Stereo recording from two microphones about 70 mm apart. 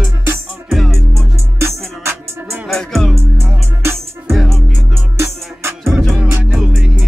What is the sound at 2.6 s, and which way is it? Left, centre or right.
Music, centre.